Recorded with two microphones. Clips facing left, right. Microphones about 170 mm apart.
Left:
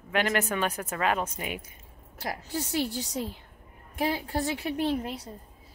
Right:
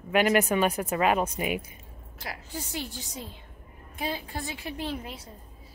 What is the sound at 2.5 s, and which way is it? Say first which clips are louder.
Speech: left 7 dB; 70° left (ahead or behind).